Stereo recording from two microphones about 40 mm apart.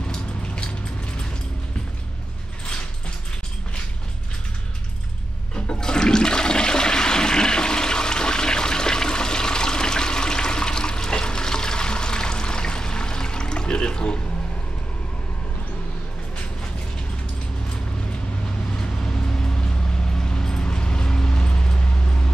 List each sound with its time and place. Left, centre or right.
0.1 s a sound: left
5.7 s toilet flush: centre
18.8 s vehicle: centre